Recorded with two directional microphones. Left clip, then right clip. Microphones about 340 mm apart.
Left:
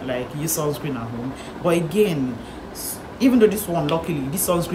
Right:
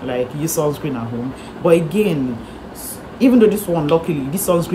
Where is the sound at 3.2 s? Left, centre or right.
Centre.